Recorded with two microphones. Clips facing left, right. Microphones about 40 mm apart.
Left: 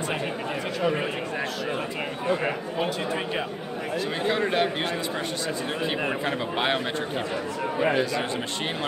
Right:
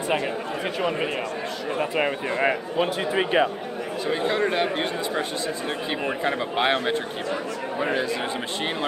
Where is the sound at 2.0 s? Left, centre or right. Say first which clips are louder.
Right 4 dB; right.